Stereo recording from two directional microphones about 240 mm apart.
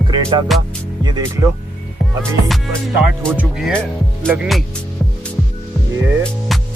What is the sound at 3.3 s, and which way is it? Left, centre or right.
Speech, centre.